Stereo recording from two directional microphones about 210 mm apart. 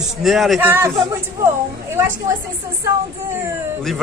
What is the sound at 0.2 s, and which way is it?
Speech, centre (ahead or behind).